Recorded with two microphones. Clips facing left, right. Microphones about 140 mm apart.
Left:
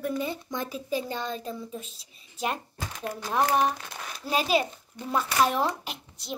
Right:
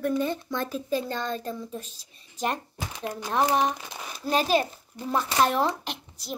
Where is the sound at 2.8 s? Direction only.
15° right (ahead or behind).